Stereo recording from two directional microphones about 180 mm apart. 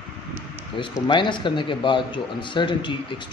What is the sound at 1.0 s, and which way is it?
A man's voice, 25° left (ahead or behind).